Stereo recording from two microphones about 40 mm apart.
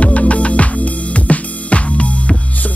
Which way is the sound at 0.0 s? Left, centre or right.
Left.